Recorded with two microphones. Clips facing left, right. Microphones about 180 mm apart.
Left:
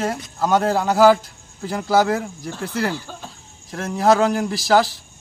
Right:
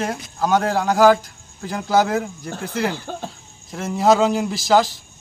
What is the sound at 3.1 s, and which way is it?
Speech, 50° right (ahead or behind).